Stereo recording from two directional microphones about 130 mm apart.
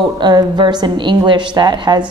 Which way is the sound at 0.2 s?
35° right (ahead or behind).